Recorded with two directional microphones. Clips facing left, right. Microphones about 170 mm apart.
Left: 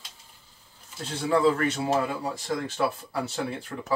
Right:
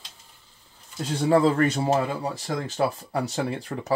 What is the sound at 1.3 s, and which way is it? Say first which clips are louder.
Speech: right 3 dB; 40° right (ahead or behind).